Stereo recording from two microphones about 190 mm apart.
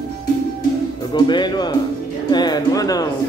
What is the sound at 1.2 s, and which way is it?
A man's voice, 25° left (ahead or behind).